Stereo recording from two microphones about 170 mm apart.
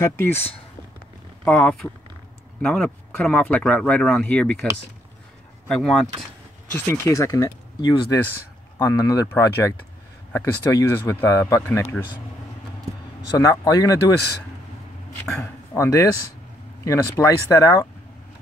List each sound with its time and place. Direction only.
0.0 s speech: 15° left (ahead or behind)
5.7 s speech: centre (ahead or behind)
6.7 s speech: 15° left (ahead or behind)
13.4 s speech: 20° left (ahead or behind)
15.2 s speech: 15° left (ahead or behind)